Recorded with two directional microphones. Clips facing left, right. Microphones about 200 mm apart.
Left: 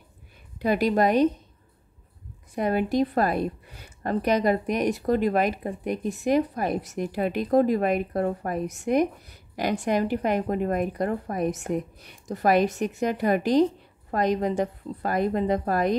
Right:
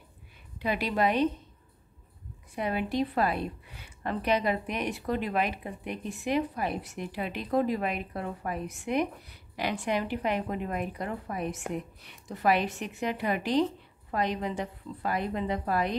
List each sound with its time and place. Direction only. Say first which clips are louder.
0.6 s a woman's voice: left 6 dB; 45° left (ahead or behind)
2.5 s a woman's voice: left 6 dB; 45° left (ahead or behind)